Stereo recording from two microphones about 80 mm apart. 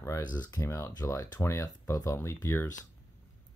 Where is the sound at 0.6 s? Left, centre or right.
Left.